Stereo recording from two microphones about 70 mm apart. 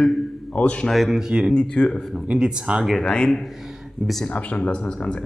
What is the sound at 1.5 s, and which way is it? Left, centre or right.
Speech, centre.